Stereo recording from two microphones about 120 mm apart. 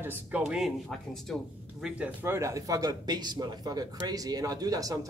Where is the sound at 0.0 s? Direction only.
15° right (ahead or behind).